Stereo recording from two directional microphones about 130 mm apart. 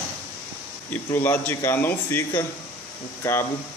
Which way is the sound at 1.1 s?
15° left (ahead or behind).